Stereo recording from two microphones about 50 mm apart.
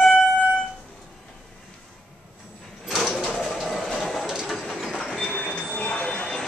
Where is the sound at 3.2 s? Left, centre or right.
Centre.